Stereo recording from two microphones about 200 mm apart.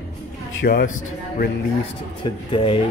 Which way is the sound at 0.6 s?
50° left (ahead or behind).